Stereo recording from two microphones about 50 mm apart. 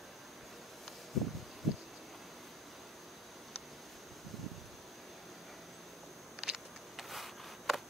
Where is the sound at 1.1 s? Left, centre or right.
Centre.